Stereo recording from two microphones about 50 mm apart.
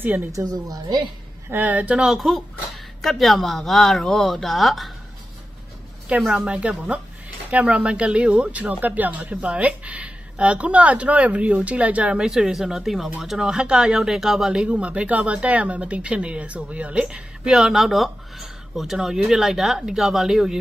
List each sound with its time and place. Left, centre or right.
0.4 s a woman's voice: right
1.5 s speech: right
2.0 s a woman's voice: centre
6.3 s speech: right
9.2 s speech: right
12.3 s speech: centre
14.6 s speech: right; by 20.5 s centre